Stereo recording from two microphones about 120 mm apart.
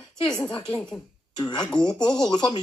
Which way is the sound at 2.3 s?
35° left (ahead or behind).